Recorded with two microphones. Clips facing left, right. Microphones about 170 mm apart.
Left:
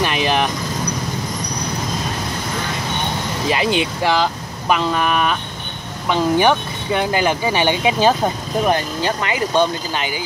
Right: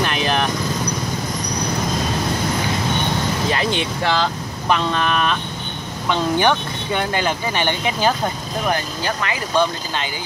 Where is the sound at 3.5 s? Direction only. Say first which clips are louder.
Left 3 dB; 10° left (ahead or behind).